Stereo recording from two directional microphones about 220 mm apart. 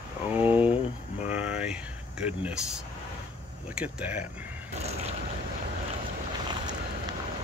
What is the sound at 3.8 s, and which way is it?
Speech, 5° right (ahead or behind).